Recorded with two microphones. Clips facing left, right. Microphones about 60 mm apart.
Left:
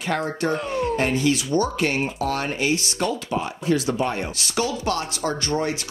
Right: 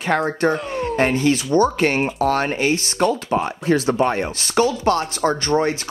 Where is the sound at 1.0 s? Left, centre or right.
Right.